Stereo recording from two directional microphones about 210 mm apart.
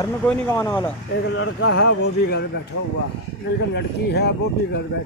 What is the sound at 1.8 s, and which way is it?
Speech, 50° left (ahead or behind).